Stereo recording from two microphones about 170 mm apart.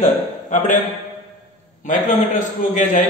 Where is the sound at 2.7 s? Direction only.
50° left (ahead or behind).